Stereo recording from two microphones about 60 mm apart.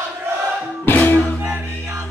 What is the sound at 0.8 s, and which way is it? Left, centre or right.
Music, left.